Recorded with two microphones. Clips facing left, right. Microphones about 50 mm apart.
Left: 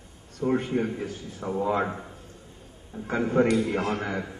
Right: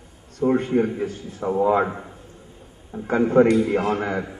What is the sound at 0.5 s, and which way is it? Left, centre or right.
Speech, centre.